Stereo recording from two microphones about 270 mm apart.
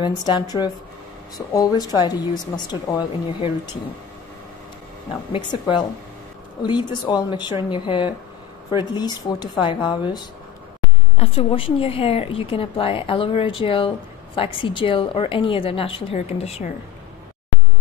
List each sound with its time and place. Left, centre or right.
0.0 s speech: centre
5.3 s a woman's voice: centre